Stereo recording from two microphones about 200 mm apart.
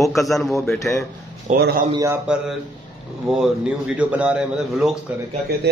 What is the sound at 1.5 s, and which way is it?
Speech, 55° right (ahead or behind).